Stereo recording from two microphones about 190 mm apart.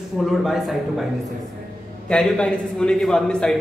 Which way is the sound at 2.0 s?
5° left (ahead or behind).